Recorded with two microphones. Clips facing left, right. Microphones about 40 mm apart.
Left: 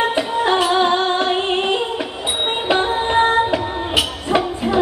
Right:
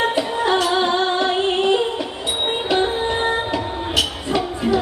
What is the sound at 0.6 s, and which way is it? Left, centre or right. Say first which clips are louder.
Music: left 3 dB; centre.